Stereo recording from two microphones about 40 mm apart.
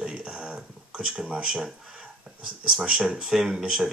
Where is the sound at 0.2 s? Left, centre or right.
Right.